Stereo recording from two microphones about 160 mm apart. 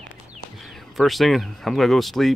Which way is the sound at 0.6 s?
Centre (ahead or behind).